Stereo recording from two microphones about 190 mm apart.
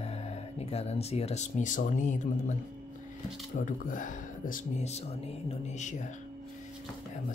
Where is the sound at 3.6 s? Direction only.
45° left (ahead or behind).